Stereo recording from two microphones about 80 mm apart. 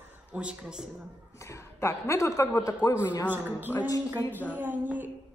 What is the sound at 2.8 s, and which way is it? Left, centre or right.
Speech, left.